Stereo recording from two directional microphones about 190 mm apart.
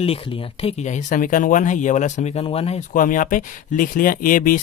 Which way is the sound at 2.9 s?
45° left (ahead or behind).